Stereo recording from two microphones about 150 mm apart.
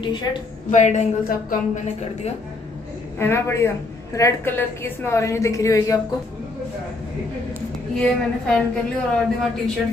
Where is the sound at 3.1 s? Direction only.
15° left (ahead or behind).